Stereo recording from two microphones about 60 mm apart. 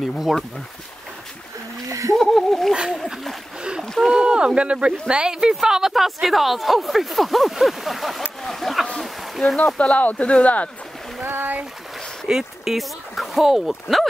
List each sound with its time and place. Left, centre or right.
0.1 s speech: centre
1.9 s splash: right
2.1 s speech: centre
2.7 s speech: centre
3.8 s rowboat: centre
4.1 s speech: centre
8.4 s a sound: centre
9.8 s speech: left
11.2 s speech: right
12.3 s speech: centre